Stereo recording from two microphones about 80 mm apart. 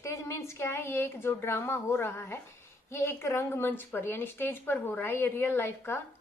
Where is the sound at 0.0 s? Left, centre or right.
Left.